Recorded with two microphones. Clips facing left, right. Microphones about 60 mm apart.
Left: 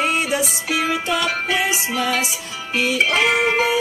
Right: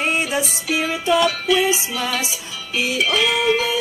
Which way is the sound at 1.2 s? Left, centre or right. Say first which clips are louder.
Right 3 dB; left.